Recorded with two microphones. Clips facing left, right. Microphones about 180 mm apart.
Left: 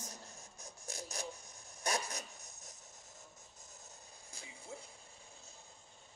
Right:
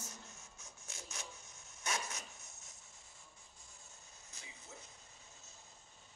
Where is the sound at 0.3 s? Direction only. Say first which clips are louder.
Left 4 dB; 35° left (ahead or behind).